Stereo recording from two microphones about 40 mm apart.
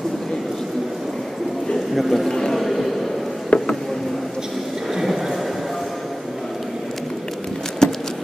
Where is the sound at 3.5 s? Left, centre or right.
Left.